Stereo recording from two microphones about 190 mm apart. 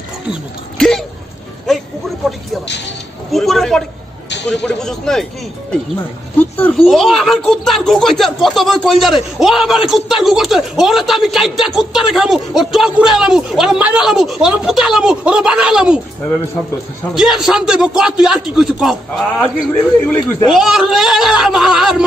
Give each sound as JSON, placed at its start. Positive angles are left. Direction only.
{"t": 0.3, "sound": "speech", "side_deg": 5}
{"t": 1.7, "sound": "a sound", "side_deg": 0}
{"t": 3.3, "sound": "speech", "side_deg": 0}
{"t": 6.3, "sound": "speech", "side_deg": 10}
{"t": 17.1, "sound": "speech", "side_deg": 0}
{"t": 19.7, "sound": "a man's voice", "side_deg": 10}
{"t": 20.5, "sound": "speech", "side_deg": 0}